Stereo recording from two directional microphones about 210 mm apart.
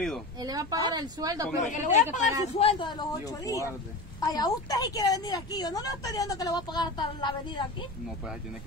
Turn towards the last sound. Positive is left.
turn(degrees=20)  # may be behind; listen again after turning